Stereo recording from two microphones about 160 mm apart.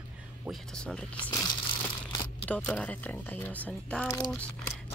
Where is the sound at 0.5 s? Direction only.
Centre (ahead or behind).